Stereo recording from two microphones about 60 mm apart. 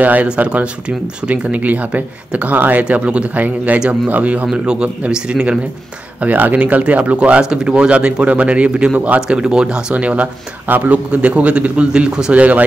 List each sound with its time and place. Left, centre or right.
0.0 s a man's voice: right
6.2 s speech: right